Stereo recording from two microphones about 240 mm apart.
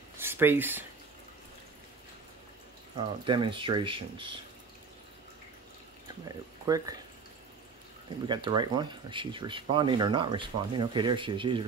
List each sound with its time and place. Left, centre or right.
0.2 s speech: centre
3.3 s speech: centre
6.2 s speech: centre
8.3 s speech: centre